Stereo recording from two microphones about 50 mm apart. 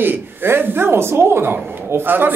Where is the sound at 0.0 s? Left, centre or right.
Right.